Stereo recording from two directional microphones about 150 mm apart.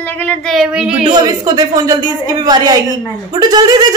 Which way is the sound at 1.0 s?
25° right (ahead or behind).